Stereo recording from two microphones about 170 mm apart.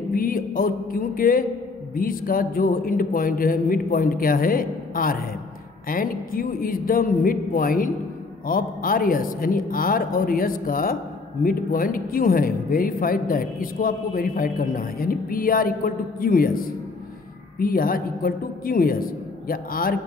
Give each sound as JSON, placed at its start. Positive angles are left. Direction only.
{"t": 0.1, "sound": "a woman's voice", "side_deg": 55}